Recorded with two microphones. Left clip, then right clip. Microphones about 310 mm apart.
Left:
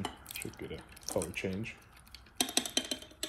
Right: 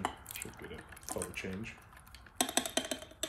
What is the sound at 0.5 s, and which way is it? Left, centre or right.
Speech, left.